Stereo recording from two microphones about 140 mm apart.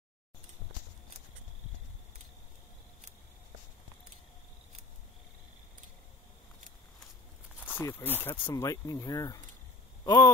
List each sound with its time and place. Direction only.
7.6 s speech: 15° left (ahead or behind)